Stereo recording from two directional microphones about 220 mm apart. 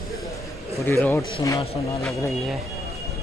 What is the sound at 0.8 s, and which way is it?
Speech, 10° left (ahead or behind).